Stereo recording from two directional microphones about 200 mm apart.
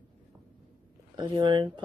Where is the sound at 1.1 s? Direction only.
20° right (ahead or behind).